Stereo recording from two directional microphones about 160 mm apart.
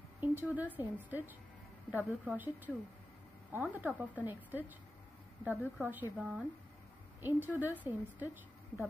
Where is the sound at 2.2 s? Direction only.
10° right (ahead or behind).